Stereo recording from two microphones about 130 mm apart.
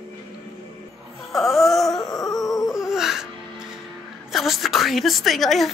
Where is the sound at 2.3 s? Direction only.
25° left (ahead or behind).